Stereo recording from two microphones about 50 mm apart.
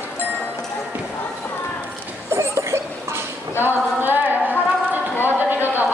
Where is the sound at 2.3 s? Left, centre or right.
Right.